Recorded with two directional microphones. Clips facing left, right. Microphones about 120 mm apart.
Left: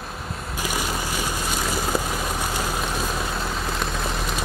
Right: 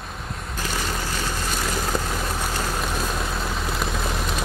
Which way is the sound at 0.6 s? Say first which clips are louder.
Left 1 dB; 10° left (ahead or behind).